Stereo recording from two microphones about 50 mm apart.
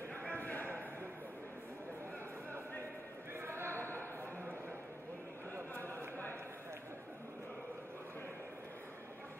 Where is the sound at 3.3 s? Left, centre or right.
Right.